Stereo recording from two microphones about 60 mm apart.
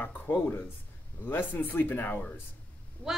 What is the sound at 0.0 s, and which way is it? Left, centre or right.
Speech, left.